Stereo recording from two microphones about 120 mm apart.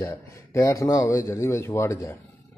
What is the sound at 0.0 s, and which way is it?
Speech, 25° left (ahead or behind).